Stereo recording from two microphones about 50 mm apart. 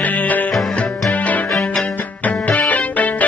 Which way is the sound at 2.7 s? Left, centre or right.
Left.